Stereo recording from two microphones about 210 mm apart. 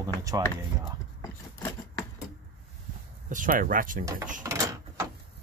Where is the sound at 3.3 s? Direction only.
40° right (ahead or behind).